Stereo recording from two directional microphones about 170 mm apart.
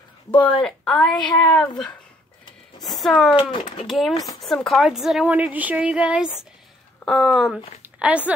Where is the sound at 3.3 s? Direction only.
30° left (ahead or behind).